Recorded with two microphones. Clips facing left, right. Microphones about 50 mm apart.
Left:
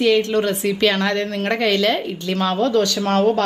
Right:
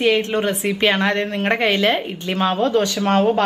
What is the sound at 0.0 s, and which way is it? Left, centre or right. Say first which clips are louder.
A woman's voice: left 1 dB; right.